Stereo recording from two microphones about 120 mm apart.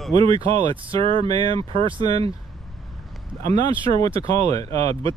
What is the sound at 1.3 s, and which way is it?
Speech, 50° right (ahead or behind).